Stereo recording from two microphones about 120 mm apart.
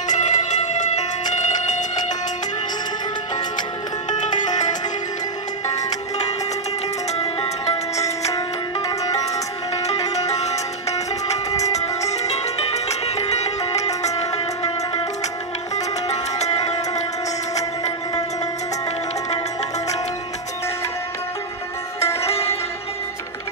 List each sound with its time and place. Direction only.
0.1 s a sound: 80° left
4.2 s music: 90° left
7.2 s music: 55° left (ahead or behind)
10.4 s music: 65° left (ahead or behind)
15.7 s music: 70° left (ahead or behind)
22.0 s music: 20° left (ahead or behind)
22.3 s music: 55° left (ahead or behind)